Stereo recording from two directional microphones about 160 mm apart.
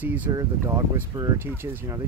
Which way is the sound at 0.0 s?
10° right (ahead or behind).